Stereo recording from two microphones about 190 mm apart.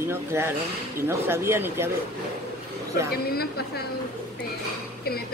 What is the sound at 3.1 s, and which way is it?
Speech, 55° left (ahead or behind).